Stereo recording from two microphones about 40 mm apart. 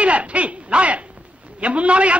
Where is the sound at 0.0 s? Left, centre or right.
Right.